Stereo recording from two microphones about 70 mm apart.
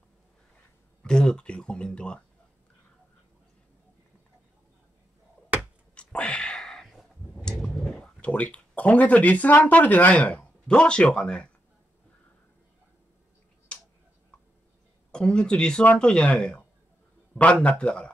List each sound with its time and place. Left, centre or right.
1.0 s speech: centre
5.9 s a sound: centre
8.2 s speech: left
15.0 s speech: centre